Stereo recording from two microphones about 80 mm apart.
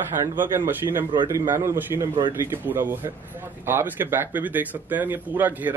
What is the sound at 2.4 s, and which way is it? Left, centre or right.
Speech, right.